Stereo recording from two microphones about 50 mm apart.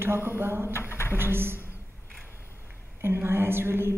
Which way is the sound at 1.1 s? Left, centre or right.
Right.